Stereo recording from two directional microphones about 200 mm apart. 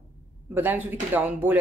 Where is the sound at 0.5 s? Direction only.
10° right (ahead or behind).